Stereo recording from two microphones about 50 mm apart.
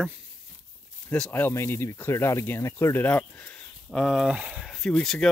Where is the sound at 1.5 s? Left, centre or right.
Left.